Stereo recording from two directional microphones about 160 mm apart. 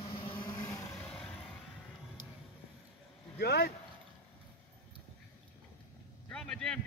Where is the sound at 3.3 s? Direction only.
90° left.